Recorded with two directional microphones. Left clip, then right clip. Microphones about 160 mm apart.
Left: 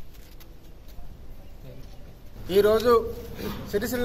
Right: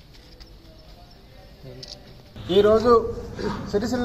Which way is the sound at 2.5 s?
15° left (ahead or behind).